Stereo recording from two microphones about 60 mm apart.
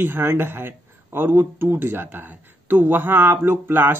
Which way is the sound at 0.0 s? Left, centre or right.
Right.